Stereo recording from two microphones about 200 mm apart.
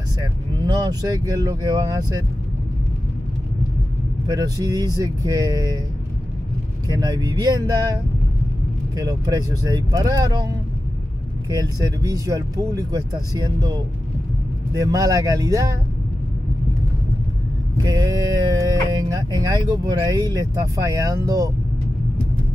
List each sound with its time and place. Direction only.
0.2 s speech: 20° right (ahead or behind)
4.3 s speech: 20° right (ahead or behind)
6.9 s speech: 20° right (ahead or behind)
8.9 s speech: 20° right (ahead or behind)
11.5 s speech: 20° right (ahead or behind)
17.8 s speech: 20° right (ahead or behind)